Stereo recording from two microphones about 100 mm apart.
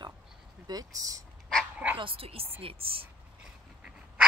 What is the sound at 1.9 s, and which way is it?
A woman's voice, 65° right (ahead or behind).